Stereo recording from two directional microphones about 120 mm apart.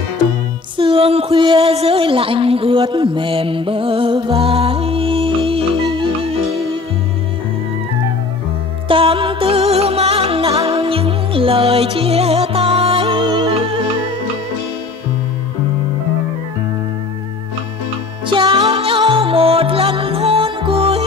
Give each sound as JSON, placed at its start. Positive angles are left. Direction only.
{"t": 0.7, "sound": "music", "side_deg": -50}
{"t": 1.7, "sound": "a sound", "side_deg": -55}
{"t": 8.8, "sound": "music", "side_deg": -50}
{"t": 18.2, "sound": "music", "side_deg": -45}